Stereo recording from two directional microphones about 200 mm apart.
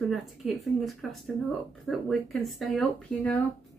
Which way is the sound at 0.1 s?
Centre (ahead or behind).